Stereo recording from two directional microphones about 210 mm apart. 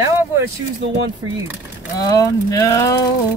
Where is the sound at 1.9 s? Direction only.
15° left (ahead or behind).